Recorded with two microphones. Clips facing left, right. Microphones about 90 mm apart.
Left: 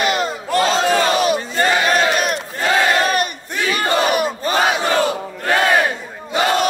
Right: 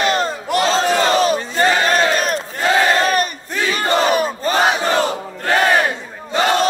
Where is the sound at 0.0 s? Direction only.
35° right (ahead or behind).